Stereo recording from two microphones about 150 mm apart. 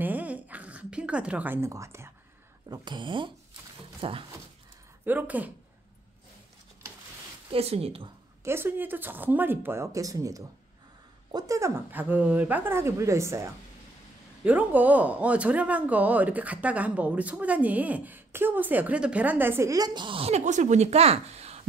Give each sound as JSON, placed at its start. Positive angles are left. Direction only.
{"t": 0.0, "sound": "a sound", "side_deg": -10}
{"t": 2.7, "sound": "speech", "side_deg": -30}
{"t": 5.0, "sound": "speech", "side_deg": -10}
{"t": 7.5, "sound": "speech", "side_deg": -40}
{"t": 8.5, "sound": "speech", "side_deg": -15}